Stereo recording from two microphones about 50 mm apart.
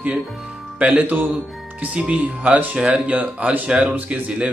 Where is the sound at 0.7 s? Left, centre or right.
Right.